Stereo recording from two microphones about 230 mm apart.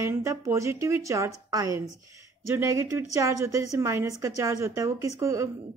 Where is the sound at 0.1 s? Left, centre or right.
Centre.